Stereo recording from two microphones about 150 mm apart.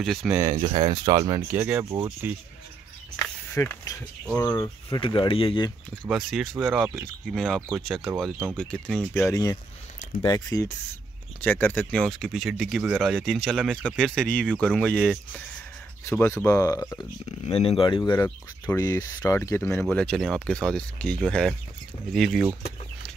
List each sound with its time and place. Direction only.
0.0 s speech: centre (ahead or behind)
0.3 s speech: 20° right (ahead or behind)
0.6 s speech: 35° right (ahead or behind)
1.5 s speech: 10° right (ahead or behind)
3.5 s speech: 20° left (ahead or behind)
4.8 s speech: 35° left (ahead or behind)
6.0 s speech: centre (ahead or behind)
9.3 s speech: 25° left (ahead or behind)
11.4 s speech: 10° left (ahead or behind)
17.5 s speech: 40° left (ahead or behind); by 22.5 s centre (ahead or behind)